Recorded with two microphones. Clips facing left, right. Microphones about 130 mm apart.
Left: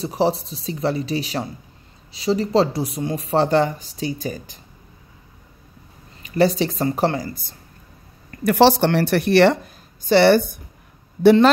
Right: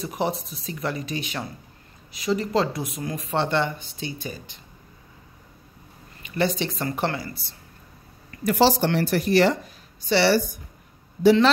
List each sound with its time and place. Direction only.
0.0 s speech: 30° left (ahead or behind)
6.2 s speech: 35° left (ahead or behind)
8.5 s speech: 65° left (ahead or behind)
10.0 s a woman's voice: 50° left (ahead or behind)